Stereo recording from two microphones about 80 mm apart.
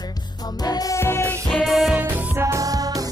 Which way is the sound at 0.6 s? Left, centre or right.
Left.